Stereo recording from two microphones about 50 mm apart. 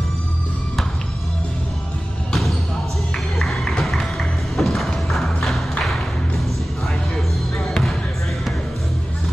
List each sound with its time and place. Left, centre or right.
3.3 s music: centre
7.5 s basketball bounce: centre